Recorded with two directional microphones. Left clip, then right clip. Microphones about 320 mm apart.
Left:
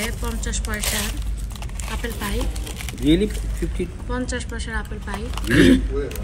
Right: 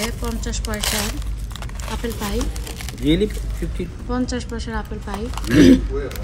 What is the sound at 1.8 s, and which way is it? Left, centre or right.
Speech, centre.